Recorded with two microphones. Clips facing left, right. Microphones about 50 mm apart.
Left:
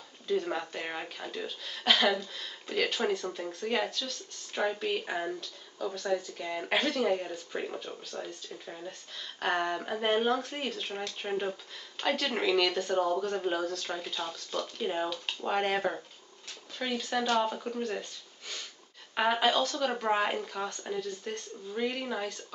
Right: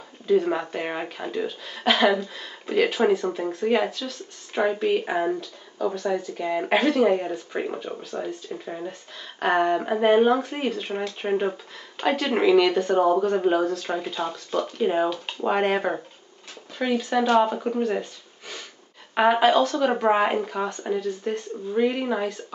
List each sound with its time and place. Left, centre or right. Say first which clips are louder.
0.3 s speech: right 9 dB; centre
3.6 s speech: right 8 dB; centre
5.9 s speech: right 6 dB; centre
11.2 s speech: right 9 dB; right
19.1 s speech: right 8 dB; centre
19.9 s speech: right 8 dB; centre
21.7 s speech: right 9 dB; centre